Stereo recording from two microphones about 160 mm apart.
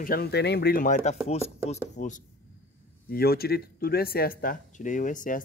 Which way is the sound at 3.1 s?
70° left (ahead or behind).